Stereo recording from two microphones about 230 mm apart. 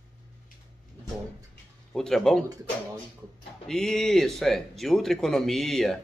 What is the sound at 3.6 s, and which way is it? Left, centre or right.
A man's voice, centre.